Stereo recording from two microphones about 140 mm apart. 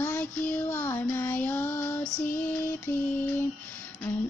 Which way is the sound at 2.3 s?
15° left (ahead or behind).